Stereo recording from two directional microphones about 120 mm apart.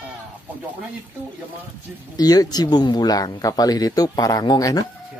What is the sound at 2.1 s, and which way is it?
Speech, 30° left (ahead or behind).